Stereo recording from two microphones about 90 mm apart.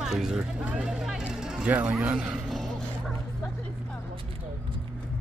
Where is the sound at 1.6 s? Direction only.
20° right (ahead or behind).